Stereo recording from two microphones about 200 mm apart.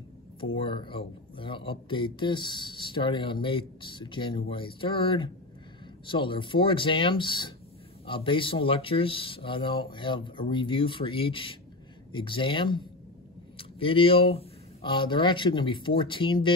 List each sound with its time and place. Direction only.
0.6 s speech: 25° left (ahead or behind)